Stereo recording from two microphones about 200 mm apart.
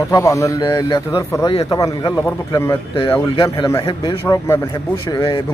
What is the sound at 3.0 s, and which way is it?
A man's voice, 25° left (ahead or behind).